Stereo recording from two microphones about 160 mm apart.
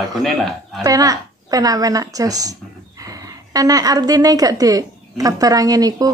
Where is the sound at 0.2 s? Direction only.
Centre (ahead or behind).